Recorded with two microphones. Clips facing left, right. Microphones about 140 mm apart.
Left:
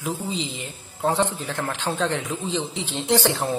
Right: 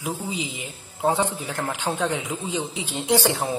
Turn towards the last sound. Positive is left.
turn(degrees=-15)  # may be behind; listen again after turning